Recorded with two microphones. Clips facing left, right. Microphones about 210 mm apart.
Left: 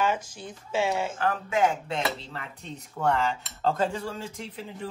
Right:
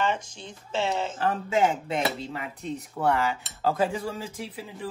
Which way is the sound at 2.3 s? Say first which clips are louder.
Right 6 dB; 5° right (ahead or behind).